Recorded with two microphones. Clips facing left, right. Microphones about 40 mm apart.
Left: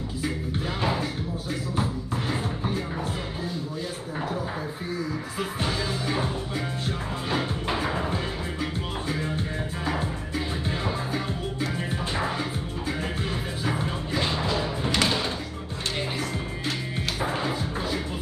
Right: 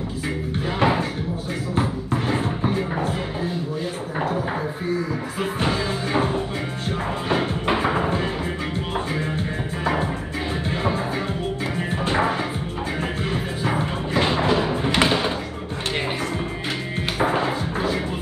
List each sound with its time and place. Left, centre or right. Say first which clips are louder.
0.7 s a sound: right 8 dB; right
1.8 s music: right 8 dB; right
5.6 s music: right 5 dB; right
10.7 s music: right 7 dB; right
12.1 s music: right 9 dB; right
13.7 s music: right 4 dB; right
17.2 s music: right 7 dB; right